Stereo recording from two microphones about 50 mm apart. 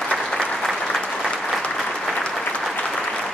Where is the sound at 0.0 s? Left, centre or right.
Centre.